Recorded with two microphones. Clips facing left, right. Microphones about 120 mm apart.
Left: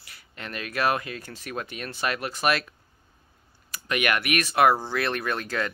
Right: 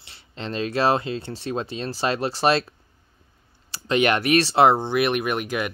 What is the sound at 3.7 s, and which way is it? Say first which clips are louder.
Speech: right 6 dB; 30° right (ahead or behind).